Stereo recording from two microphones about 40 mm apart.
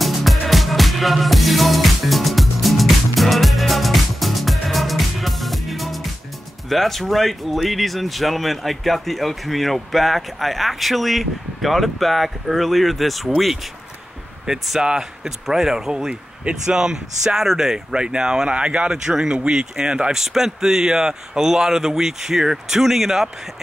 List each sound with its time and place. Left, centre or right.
0.0 s music: centre
6.7 s speech: centre
14.4 s speech: centre
17.9 s speech: right